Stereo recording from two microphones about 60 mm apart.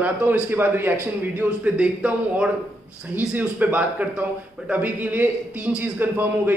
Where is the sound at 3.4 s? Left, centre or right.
Right.